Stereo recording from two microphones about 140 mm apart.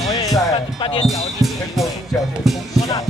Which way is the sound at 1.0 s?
Centre (ahead or behind).